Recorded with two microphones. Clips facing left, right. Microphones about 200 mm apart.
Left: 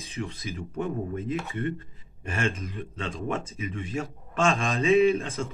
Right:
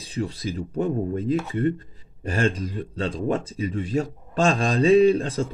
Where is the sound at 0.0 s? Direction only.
30° right (ahead or behind).